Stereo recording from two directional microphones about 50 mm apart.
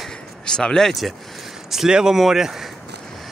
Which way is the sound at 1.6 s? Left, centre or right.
Centre.